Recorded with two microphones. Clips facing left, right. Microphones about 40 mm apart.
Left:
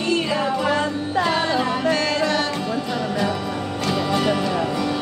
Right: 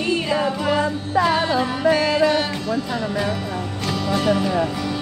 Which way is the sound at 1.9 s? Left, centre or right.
Centre.